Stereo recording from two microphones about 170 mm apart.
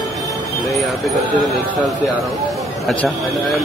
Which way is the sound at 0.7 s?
Centre (ahead or behind).